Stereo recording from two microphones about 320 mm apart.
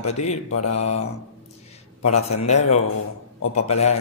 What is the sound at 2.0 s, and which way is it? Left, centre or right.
Mantra, left.